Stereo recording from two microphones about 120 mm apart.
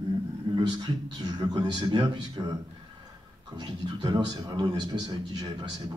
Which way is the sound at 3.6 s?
35° right (ahead or behind).